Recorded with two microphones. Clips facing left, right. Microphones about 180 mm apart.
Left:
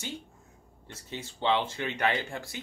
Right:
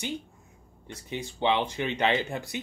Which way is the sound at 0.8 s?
15° right (ahead or behind).